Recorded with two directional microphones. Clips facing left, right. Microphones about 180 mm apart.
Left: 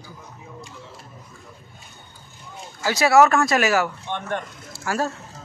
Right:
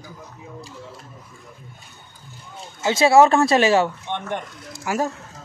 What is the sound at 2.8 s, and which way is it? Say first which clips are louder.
Speech: right 2 dB; 25° right (ahead or behind).